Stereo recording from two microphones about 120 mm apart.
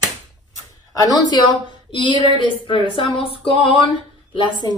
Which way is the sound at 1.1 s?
35° left (ahead or behind).